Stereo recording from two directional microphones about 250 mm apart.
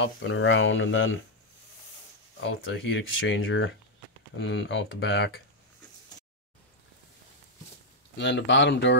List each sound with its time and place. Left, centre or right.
0.0 s speech: left
2.4 s speech: left
8.2 s speech: left